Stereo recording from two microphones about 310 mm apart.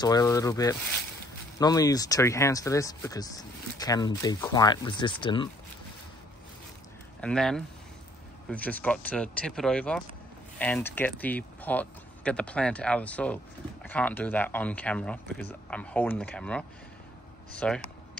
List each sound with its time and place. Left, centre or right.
0.0 s speech: centre
7.2 s speech: centre